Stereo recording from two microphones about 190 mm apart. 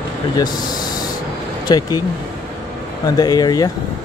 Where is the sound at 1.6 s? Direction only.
20° left (ahead or behind).